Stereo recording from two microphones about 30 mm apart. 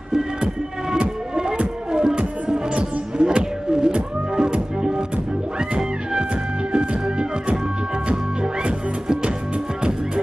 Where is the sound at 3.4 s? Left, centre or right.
Right.